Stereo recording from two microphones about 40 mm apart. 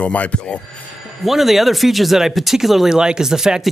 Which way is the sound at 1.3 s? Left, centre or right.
Centre.